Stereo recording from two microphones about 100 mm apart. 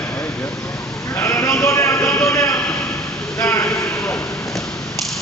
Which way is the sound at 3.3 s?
25° left (ahead or behind).